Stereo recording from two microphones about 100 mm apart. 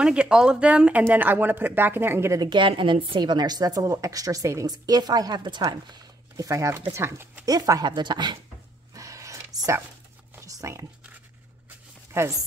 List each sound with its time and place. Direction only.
0.0 s speech: 10° right (ahead or behind); by 2.4 s 25° right (ahead or behind)
2.4 s a woman's voice: 55° right (ahead or behind); by 7.4 s 25° right (ahead or behind)
7.4 s speech: 35° right (ahead or behind)
7.9 s a woman's voice: 50° right (ahead or behind)
8.9 s a sound: 35° right (ahead or behind)
12.1 s speech: 30° right (ahead or behind)